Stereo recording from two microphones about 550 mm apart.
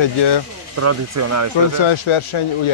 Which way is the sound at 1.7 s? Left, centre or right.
Left.